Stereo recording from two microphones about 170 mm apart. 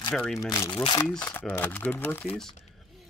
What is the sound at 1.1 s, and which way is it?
Speech, 10° left (ahead or behind).